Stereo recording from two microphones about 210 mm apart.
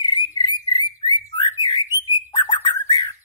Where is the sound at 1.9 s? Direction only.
10° right (ahead or behind).